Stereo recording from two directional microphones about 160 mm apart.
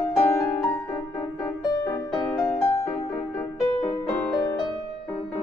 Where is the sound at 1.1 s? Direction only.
25° left (ahead or behind).